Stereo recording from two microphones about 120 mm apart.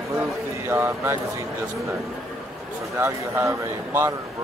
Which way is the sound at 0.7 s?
20° right (ahead or behind).